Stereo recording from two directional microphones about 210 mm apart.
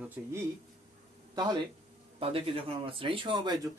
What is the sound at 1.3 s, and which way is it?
A man's voice, 20° right (ahead or behind).